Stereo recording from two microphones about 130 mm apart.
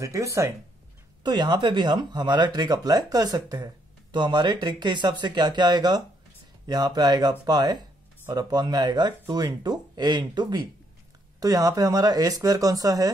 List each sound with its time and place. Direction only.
0.0 s speech: 25° right (ahead or behind)
1.2 s speech: 35° right (ahead or behind)